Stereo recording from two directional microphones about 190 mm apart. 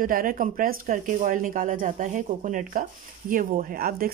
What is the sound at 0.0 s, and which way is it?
Speech, 45° right (ahead or behind).